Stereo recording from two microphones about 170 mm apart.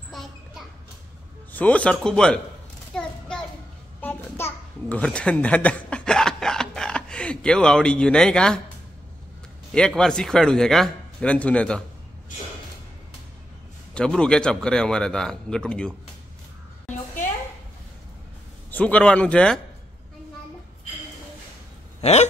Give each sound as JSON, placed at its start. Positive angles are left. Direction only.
{"t": 0.1, "sound": "a sound", "side_deg": 0}
{"t": 1.5, "sound": "a man's voice", "side_deg": 10}
{"t": 2.9, "sound": "a sound", "side_deg": 5}
{"t": 4.0, "sound": "babbling", "side_deg": 10}
{"t": 9.7, "sound": "a man's voice", "side_deg": 5}
{"t": 13.9, "sound": "a man's voice", "side_deg": 5}
{"t": 18.7, "sound": "a man's voice", "side_deg": 10}
{"t": 22.0, "sound": "speech", "side_deg": 40}